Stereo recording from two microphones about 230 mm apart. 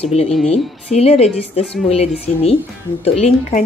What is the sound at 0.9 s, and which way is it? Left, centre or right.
Speech, left.